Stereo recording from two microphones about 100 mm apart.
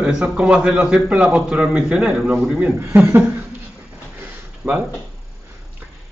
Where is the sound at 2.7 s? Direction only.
25° right (ahead or behind).